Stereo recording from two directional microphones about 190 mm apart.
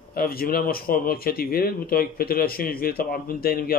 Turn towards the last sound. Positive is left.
turn(degrees=50)  # may be behind; listen again after turning